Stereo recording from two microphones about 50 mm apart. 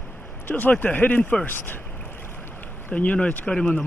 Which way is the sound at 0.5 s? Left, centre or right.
Left.